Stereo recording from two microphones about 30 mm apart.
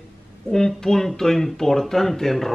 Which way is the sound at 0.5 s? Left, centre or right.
Centre.